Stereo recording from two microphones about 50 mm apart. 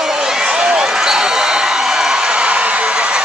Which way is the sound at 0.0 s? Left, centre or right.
Centre.